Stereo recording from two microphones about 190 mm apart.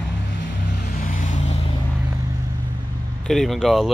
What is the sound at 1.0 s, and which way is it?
Vehicle, 45° left (ahead or behind).